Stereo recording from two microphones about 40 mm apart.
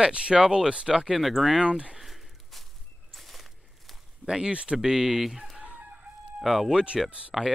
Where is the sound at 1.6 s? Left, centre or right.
Right.